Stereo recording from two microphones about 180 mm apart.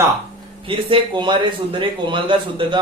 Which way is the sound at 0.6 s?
25° right (ahead or behind).